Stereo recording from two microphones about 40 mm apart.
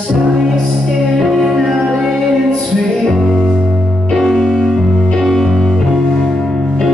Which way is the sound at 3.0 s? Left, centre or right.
Centre.